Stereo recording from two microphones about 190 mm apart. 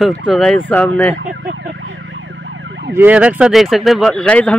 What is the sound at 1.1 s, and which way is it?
Emergency vehicle, 75° right (ahead or behind).